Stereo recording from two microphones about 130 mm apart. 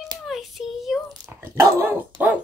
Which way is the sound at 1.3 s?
20° right (ahead or behind).